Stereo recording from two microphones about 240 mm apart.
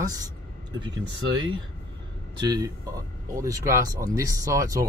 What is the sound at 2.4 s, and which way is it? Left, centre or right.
Speech, centre.